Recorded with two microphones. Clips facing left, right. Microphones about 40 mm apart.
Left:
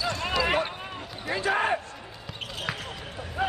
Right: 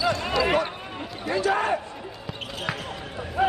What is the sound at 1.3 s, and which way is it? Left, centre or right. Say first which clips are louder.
Basketball bounce: right 2 dB; centre.